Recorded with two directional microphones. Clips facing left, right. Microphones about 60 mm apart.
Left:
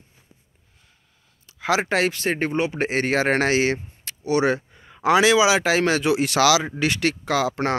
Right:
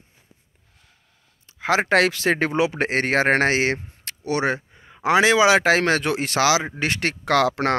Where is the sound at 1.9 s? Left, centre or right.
Right.